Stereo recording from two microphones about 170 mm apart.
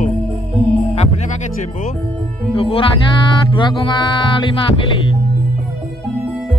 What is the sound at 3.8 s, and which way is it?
Music, 25° left (ahead or behind).